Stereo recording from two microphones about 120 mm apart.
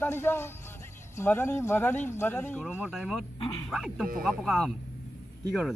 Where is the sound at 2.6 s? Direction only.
10° right (ahead or behind).